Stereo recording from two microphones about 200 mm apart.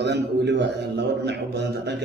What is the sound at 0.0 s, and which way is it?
A man's voice, 60° right (ahead or behind).